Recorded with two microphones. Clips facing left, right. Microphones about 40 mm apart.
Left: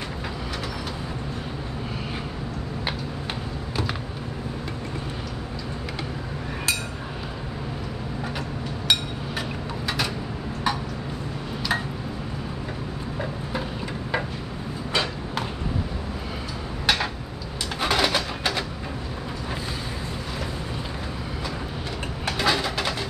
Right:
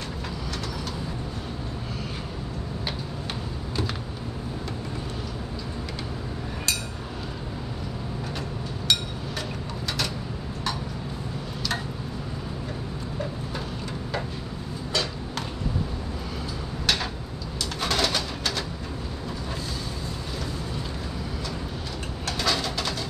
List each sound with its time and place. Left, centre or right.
16.8 s tick-tock: centre
17.7 s bird: left
22.2 s bird: left